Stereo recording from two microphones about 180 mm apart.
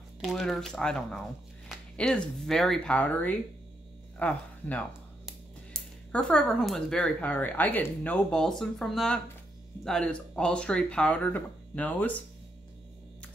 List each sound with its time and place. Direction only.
0.2 s speech: centre (ahead or behind)